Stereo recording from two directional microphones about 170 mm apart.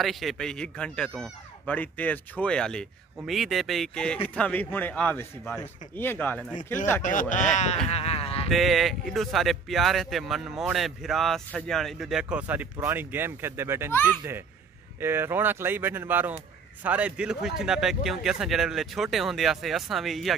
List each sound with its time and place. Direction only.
0.0 s speech: centre (ahead or behind)
7.0 s speech: 50° left (ahead or behind)
8.5 s speech: centre (ahead or behind)
15.0 s speech: 15° right (ahead or behind)